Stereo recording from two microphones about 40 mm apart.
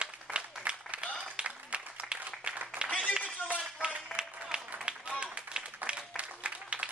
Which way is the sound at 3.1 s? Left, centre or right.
Right.